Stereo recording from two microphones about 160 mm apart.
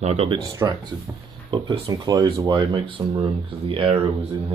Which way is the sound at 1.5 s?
30° right (ahead or behind).